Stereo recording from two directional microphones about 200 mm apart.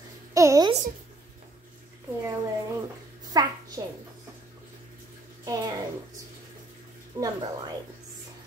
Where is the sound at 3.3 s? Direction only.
20° right (ahead or behind).